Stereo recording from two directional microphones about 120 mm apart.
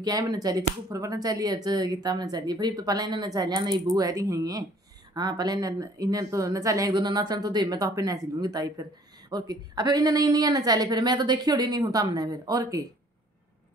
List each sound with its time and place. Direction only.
0.0 s speech: 35° right (ahead or behind)